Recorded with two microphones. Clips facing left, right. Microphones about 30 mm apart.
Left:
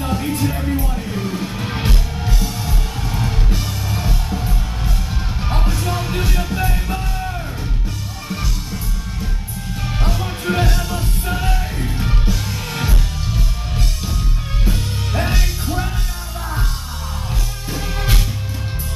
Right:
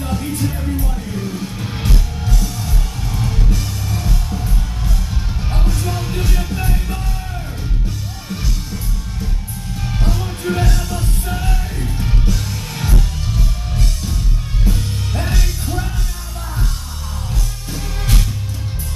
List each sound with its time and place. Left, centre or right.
0.0 s music: centre
8.3 s music: centre
17.6 s music: centre